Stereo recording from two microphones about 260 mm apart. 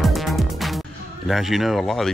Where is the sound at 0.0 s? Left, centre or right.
Centre.